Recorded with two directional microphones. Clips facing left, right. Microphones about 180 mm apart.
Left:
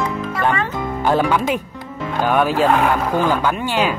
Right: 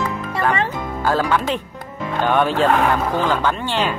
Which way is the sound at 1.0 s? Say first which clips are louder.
Left 2 dB; 20° left (ahead or behind).